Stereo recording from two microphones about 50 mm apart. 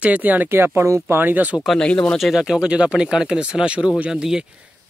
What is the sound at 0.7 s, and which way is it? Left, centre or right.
Speech, right.